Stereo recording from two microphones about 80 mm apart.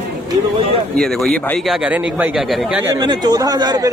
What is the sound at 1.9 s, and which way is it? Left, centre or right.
Speech, centre.